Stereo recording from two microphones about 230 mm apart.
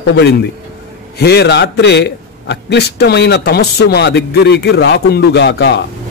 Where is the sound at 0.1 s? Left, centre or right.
Left.